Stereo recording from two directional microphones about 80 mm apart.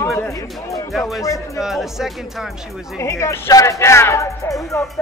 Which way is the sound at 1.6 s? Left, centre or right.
Centre.